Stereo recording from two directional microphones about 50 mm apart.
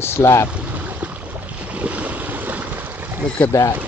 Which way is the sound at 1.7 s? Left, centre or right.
Right.